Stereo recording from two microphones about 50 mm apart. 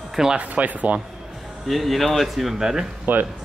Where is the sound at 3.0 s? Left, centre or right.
Right.